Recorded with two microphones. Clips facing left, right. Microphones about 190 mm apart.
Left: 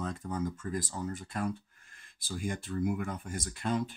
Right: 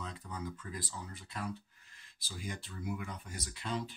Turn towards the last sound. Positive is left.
turn(degrees=50)  # may be behind; listen again after turning